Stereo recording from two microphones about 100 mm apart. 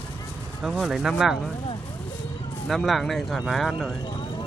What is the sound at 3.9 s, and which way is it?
Vehicle, 50° left (ahead or behind).